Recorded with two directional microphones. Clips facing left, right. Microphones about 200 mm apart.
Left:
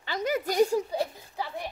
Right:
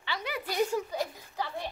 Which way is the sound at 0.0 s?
45° left (ahead or behind).